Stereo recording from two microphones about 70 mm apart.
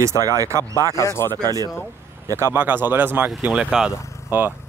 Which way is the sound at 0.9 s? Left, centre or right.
Left.